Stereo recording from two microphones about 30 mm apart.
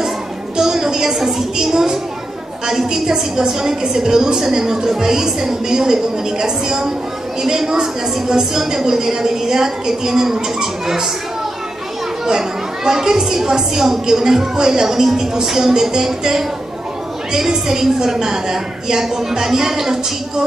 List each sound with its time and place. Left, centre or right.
0.6 s a child's voice: centre
12.3 s a woman's voice: centre